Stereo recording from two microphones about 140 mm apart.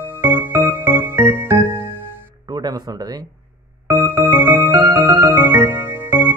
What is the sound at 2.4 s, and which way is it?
Music, 30° right (ahead or behind).